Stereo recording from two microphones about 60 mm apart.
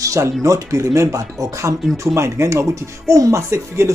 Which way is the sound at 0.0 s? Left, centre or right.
Right.